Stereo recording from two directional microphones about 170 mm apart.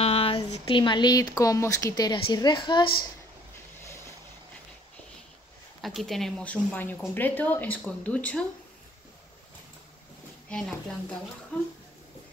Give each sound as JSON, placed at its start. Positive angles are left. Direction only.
{"t": 0.0, "sound": "speech", "side_deg": 35}
{"t": 5.8, "sound": "speech", "side_deg": 0}
{"t": 10.5, "sound": "speech", "side_deg": 5}